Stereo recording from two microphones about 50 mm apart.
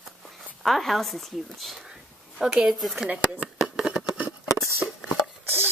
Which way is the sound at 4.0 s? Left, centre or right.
Right.